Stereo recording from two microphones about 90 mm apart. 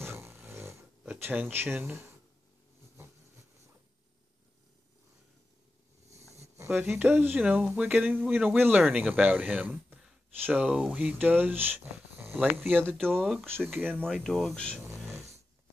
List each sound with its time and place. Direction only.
0.0 s a sound: 30° right (ahead or behind)
1.2 s speech: 20° right (ahead or behind)
6.7 s speech: 20° right (ahead or behind)
8.8 s speech: 10° right (ahead or behind)
13.0 s speech: centre (ahead or behind)
13.7 s speech: 20° right (ahead or behind)
14.0 s speech: 5° left (ahead or behind)